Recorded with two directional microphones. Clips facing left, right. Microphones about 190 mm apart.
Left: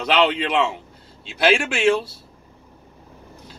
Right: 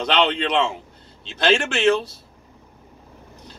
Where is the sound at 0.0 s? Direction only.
5° left (ahead or behind).